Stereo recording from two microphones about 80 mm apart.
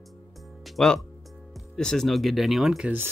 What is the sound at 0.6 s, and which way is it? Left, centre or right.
Music, centre.